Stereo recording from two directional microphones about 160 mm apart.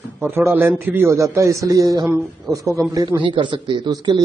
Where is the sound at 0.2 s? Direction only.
15° right (ahead or behind).